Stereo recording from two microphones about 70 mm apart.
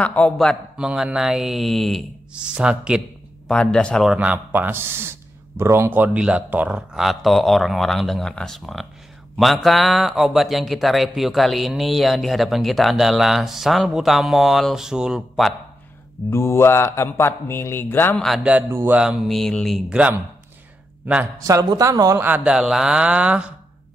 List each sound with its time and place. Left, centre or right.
0.0 s a man's voice: centre
0.7 s speech: centre
2.3 s speech: centre
3.4 s speech: centre
4.2 s speech: right
6.9 s speech: centre
16.3 s speech: left
19.0 s speech: centre
19.9 s speech: centre
21.4 s speech: right
22.4 s speech: centre